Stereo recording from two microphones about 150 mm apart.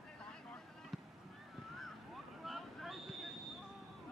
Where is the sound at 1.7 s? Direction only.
Centre (ahead or behind).